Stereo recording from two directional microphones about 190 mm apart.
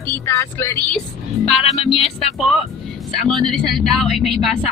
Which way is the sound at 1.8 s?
30° left (ahead or behind).